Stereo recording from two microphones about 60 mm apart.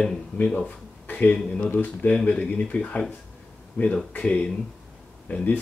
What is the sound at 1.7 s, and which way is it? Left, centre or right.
Speech, left.